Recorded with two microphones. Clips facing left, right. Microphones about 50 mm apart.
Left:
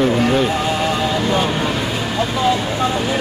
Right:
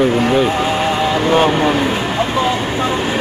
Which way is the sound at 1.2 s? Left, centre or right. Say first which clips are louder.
Right 8 dB; right.